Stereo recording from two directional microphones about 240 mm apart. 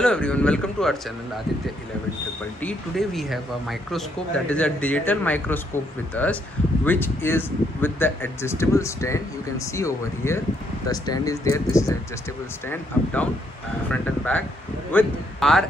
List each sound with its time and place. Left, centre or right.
0.0 s speech: centre
2.6 s speech: centre